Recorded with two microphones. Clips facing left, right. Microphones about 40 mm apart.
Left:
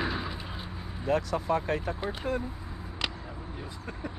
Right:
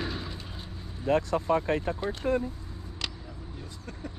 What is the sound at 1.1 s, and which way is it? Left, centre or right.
Speech, right.